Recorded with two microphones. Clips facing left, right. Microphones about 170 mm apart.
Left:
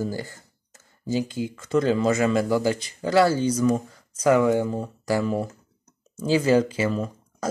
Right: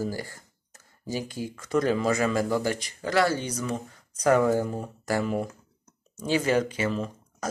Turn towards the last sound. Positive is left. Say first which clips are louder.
# left 4 dB
turn(degrees=30)  # may be behind; listen again after turning